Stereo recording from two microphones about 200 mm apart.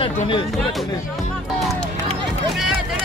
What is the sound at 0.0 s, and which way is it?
Speech, 25° left (ahead or behind).